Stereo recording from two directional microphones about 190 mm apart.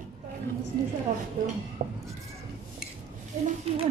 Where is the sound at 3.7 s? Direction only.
30° right (ahead or behind).